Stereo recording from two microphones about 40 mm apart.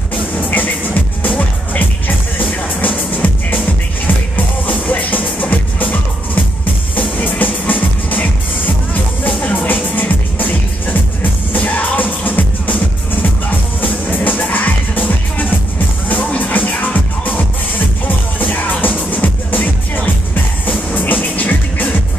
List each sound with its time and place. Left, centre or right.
0.4 s music: left
4.6 s music: left
7.0 s music: left
11.5 s music: left